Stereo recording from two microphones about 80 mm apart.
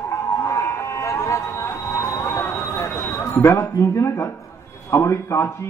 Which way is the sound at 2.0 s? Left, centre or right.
Left.